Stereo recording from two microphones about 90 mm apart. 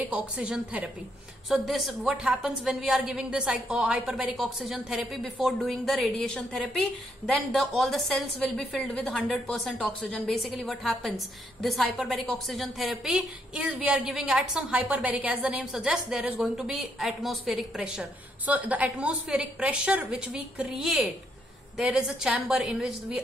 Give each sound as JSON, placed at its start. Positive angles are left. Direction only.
{"t": 0.0, "sound": "a woman's voice", "side_deg": -15}
{"t": 1.5, "sound": "a woman's voice", "side_deg": 0}